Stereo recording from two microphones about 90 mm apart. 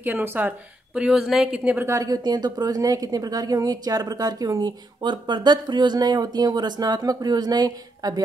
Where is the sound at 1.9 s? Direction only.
40° right (ahead or behind).